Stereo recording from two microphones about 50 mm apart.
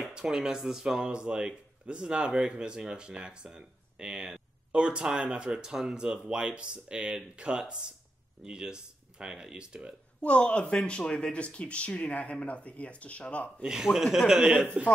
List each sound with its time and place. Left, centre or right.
0.2 s speech: centre
10.2 s speech: left
13.9 s speech: centre
14.8 s speech: right